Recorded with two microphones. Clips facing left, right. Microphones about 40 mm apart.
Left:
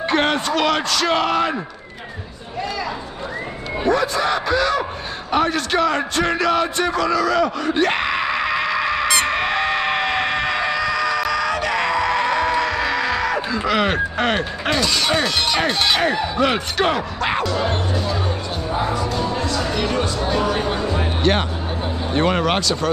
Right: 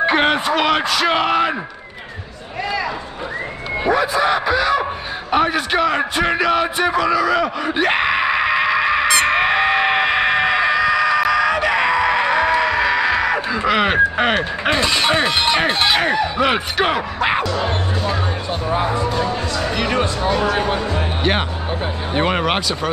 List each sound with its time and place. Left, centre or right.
0.0 s speech: centre
3.8 s speech: centre
9.0 s a sound: centre
9.4 s screaming: centre
19.0 s speech: centre
19.7 s speech: right